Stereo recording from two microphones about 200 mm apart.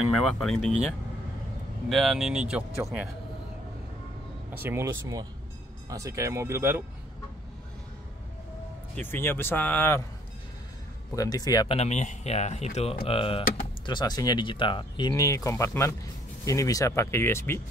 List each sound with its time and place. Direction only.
0.1 s speech: centre (ahead or behind)
1.9 s speech: centre (ahead or behind)
4.6 s speech: 15° right (ahead or behind)
8.9 s speech: 10° left (ahead or behind)
11.1 s speech: 15° left (ahead or behind)
11.7 s speech: 35° left (ahead or behind); by 17.6 s 10° left (ahead or behind)